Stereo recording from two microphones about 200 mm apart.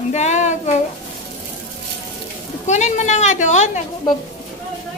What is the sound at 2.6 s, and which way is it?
A woman's voice, 35° left (ahead or behind).